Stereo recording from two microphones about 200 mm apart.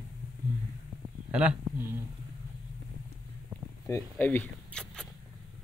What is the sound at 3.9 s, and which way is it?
Speech, 10° left (ahead or behind).